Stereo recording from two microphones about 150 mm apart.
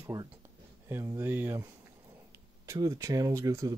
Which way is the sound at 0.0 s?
25° right (ahead or behind).